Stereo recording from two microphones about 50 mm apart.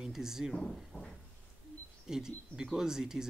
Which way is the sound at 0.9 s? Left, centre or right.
Left.